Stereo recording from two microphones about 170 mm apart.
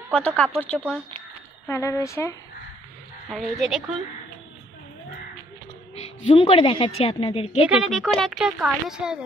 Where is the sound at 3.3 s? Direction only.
Centre (ahead or behind).